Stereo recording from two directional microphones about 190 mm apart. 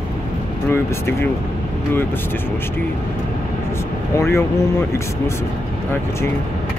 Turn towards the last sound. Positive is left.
turn(degrees=15)  # may be behind; listen again after turning